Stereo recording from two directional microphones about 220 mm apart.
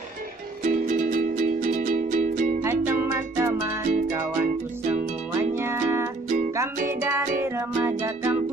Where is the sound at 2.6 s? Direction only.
10° right (ahead or behind).